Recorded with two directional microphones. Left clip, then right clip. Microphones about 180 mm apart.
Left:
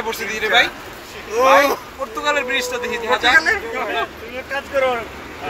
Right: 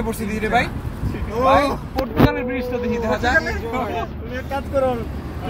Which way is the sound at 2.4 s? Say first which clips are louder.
Left 2 dB; 35° right (ahead or behind).